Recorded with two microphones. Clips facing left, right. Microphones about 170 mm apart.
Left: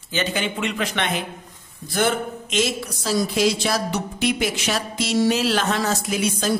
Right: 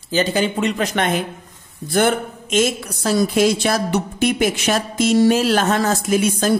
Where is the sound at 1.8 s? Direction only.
50° right (ahead or behind).